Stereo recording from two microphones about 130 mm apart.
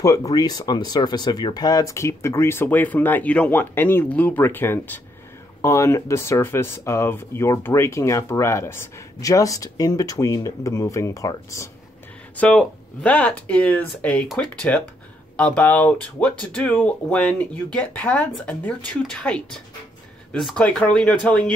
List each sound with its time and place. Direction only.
0.0 s speech: 25° left (ahead or behind)
12.4 s speech: 10° left (ahead or behind)